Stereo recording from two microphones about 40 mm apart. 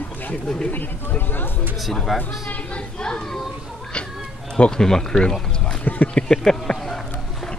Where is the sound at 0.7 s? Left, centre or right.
Left.